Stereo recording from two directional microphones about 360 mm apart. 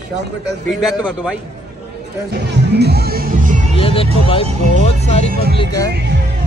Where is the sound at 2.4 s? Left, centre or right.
Right.